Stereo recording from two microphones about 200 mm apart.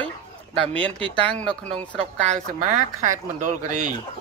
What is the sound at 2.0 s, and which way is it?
Speech, 35° right (ahead or behind).